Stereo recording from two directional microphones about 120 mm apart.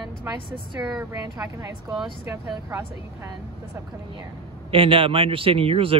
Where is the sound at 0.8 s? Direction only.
10° right (ahead or behind).